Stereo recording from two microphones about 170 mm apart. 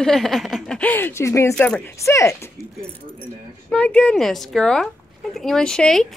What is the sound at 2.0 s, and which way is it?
Speech, 15° left (ahead or behind).